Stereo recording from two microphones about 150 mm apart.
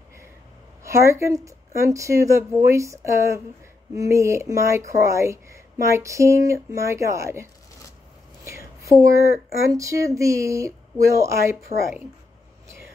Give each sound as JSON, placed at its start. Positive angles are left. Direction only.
{"t": 0.8, "sound": "speech", "side_deg": -20}
{"t": 8.5, "sound": "a sound", "side_deg": -20}
{"t": 9.7, "sound": "speech", "side_deg": -20}